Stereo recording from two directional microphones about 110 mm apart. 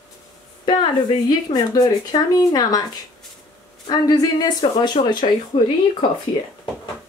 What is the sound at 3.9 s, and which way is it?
A woman's voice, 35° left (ahead or behind).